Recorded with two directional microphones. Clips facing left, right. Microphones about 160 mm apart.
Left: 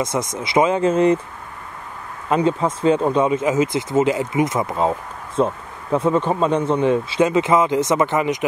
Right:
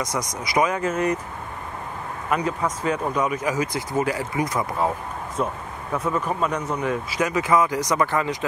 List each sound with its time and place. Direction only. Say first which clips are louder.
0.0 s speech: left 5 dB; 25° left (ahead or behind)
2.2 s speech: left 6 dB; 25° left (ahead or behind)